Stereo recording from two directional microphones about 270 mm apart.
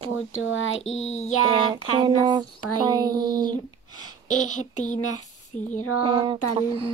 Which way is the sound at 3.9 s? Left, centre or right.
Left.